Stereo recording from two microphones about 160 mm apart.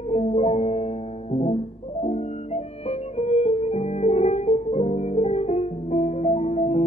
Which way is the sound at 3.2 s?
40° left (ahead or behind).